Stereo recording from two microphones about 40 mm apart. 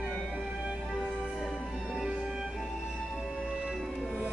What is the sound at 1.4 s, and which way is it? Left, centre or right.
Music, centre.